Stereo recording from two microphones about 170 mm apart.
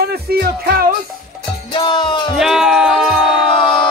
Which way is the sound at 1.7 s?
30° left (ahead or behind).